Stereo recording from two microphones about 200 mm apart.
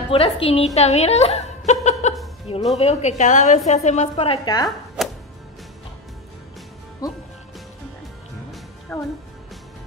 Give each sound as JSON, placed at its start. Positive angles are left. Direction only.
{"t": 0.1, "sound": "a woman's voice", "side_deg": 30}
{"t": 1.7, "sound": "chuckle", "side_deg": 35}
{"t": 2.5, "sound": "a woman's voice", "side_deg": 30}
{"t": 4.6, "sound": "chopping", "side_deg": 0}
{"t": 7.0, "sound": "speech", "side_deg": 15}
{"t": 8.9, "sound": "speech", "side_deg": 10}